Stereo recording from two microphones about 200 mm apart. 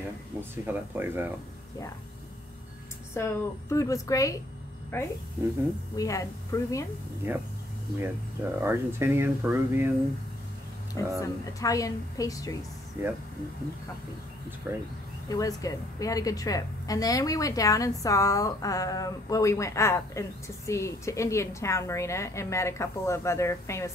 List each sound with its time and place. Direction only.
0.4 s speech: 10° right (ahead or behind)
3.2 s a woman's voice: 15° left (ahead or behind)
5.4 s speech: 10° right (ahead or behind)
5.9 s a woman's voice: 15° left (ahead or behind)
7.3 s speech: 10° right (ahead or behind)
8.5 s speech: 10° right (ahead or behind)
11.1 s a woman's voice: 15° left (ahead or behind)
14.7 s speech: 10° right (ahead or behind)
15.2 s a woman's voice: 15° left (ahead or behind)